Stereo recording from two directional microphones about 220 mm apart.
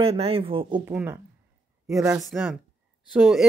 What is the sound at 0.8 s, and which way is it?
A woman's voice, 10° right (ahead or behind).